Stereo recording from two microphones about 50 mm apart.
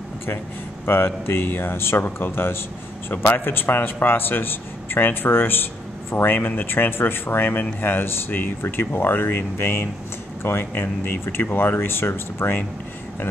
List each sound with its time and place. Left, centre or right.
0.8 s speech: left
10.7 s speech: left